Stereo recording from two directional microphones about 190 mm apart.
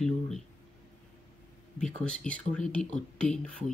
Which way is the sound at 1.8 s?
5° left (ahead or behind).